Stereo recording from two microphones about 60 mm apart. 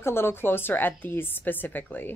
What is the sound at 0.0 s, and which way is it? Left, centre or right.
A woman's voice, left.